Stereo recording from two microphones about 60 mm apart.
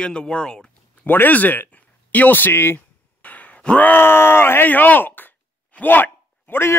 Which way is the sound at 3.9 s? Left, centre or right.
Left.